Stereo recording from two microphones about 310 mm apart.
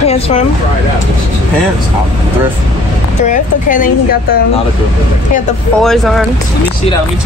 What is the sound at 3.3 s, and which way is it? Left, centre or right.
Speech, left.